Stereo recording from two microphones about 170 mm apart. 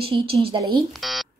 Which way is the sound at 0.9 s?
Centre (ahead or behind).